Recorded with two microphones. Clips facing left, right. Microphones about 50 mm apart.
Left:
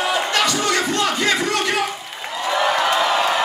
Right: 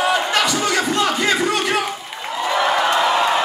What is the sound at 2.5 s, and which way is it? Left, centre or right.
Crowd, centre.